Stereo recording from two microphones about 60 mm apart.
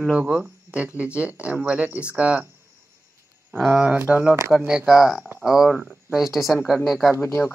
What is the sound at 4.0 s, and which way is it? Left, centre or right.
Speech, right.